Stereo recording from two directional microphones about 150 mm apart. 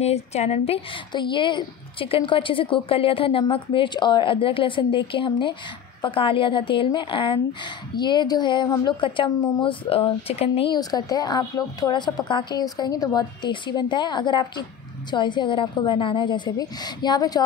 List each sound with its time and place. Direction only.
0.0 s a woman's voice: 45° left (ahead or behind)
1.1 s a woman's voice: 30° left (ahead or behind)
10.7 s a woman's voice: 25° left (ahead or behind)